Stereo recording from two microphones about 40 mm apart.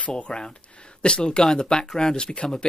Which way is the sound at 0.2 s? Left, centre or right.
Left.